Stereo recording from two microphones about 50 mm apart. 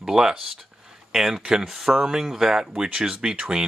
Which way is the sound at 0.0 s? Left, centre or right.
Centre.